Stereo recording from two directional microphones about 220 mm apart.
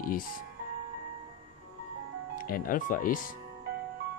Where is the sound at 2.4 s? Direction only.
40° left (ahead or behind).